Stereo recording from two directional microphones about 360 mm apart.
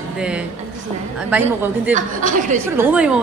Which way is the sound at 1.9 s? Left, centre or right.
Right.